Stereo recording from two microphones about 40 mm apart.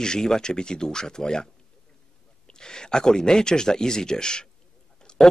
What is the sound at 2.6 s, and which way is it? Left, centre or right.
Speech, centre.